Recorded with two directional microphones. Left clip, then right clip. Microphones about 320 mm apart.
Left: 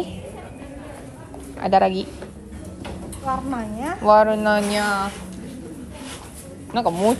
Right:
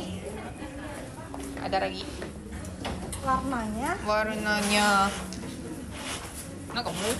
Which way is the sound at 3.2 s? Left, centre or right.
Left.